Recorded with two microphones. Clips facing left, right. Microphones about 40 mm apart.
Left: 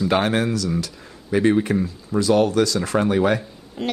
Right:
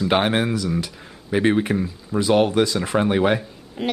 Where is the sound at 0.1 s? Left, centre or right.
Right.